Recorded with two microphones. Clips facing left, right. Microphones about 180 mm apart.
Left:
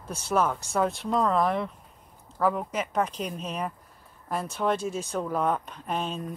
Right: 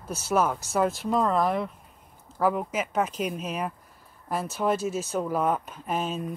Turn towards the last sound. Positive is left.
turn(degrees=-5)  # may be behind; listen again after turning